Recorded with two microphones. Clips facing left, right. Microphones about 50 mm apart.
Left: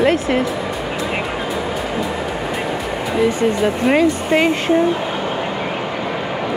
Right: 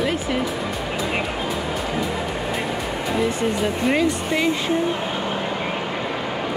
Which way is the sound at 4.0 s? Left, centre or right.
Left.